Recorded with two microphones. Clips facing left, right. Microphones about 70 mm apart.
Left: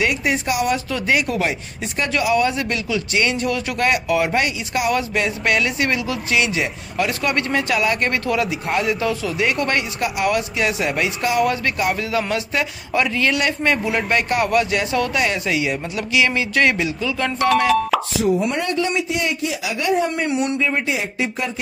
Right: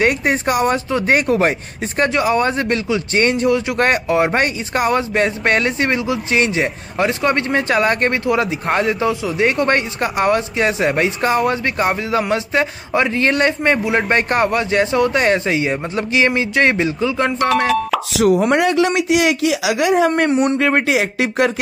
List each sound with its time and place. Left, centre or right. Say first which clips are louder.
0.0 s speech: right 4 dB; right
0.8 s speech: right 4 dB; right
3.4 s speech: right 5 dB; right
17.4 s speech: left 2 dB; centre
18.1 s speech: right 10 dB; right
20.2 s speech: right 5 dB; right
20.5 s speech: right 6 dB; right